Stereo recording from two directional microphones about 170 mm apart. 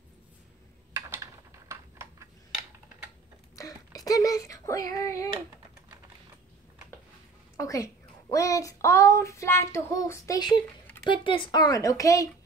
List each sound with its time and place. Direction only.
0.9 s a sound: 15° right (ahead or behind)
3.5 s child singing: 20° left (ahead or behind)
7.5 s a woman's voice: 20° left (ahead or behind)